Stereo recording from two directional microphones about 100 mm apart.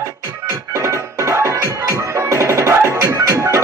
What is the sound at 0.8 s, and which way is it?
Music, 30° right (ahead or behind).